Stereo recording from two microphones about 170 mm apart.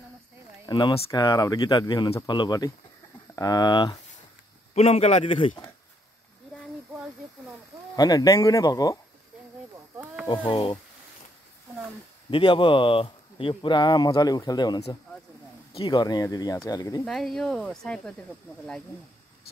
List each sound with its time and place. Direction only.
0.7 s speech: 25° left (ahead or behind)
4.7 s a man's voice: 40° left (ahead or behind)
7.9 s speech: 20° left (ahead or behind)
10.2 s speech: 30° left (ahead or behind)
12.3 s speech: 30° left (ahead or behind)
17.0 s speech: centre (ahead or behind)